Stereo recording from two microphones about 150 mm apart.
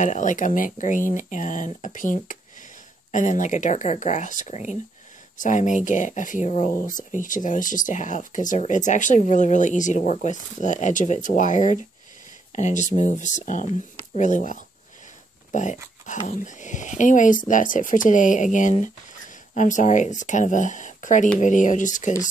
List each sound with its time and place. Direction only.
0.0 s speech: 55° left (ahead or behind)
15.5 s dog: 55° left (ahead or behind)
16.3 s speech: 55° left (ahead or behind)